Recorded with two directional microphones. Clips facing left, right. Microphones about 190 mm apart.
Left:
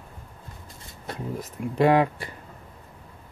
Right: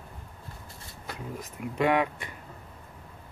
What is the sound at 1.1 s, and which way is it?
Speech, 35° left (ahead or behind).